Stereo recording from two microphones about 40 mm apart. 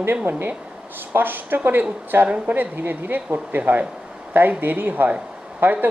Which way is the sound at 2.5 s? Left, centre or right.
Right.